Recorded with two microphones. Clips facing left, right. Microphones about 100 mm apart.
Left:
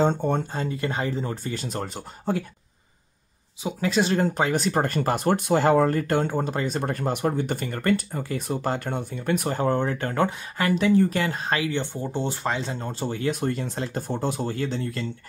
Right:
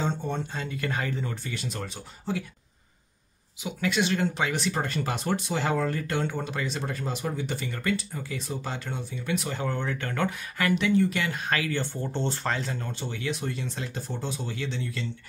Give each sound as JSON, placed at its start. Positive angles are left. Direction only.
{"t": 0.0, "sound": "speech", "side_deg": 50}
{"t": 0.7, "sound": "speech", "side_deg": 25}
{"t": 3.6, "sound": "speech", "side_deg": 35}
{"t": 12.9, "sound": "speech", "side_deg": 40}